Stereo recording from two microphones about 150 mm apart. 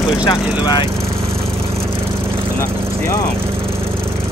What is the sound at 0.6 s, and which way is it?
Speech, 25° left (ahead or behind).